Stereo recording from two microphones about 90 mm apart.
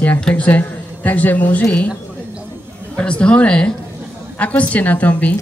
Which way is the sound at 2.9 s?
10° left (ahead or behind).